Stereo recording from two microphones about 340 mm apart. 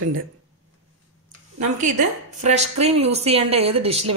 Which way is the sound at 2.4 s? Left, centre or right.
Centre.